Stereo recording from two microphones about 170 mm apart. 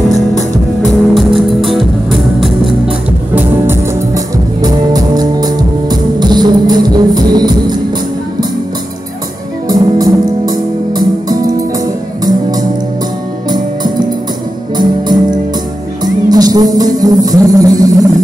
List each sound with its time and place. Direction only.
1.1 s music: centre (ahead or behind)
3.3 s music: 15° right (ahead or behind)
9.7 s music: 20° right (ahead or behind)